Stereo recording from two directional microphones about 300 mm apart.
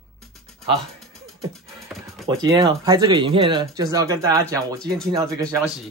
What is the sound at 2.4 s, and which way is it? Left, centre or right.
Speech, centre.